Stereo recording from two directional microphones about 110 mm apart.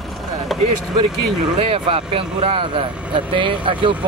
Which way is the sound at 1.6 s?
60° right (ahead or behind).